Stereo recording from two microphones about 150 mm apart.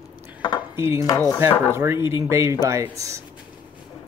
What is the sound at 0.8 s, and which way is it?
Speech, 20° right (ahead or behind).